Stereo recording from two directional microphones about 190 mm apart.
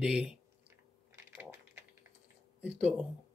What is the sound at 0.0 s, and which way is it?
Speech, 5° right (ahead or behind).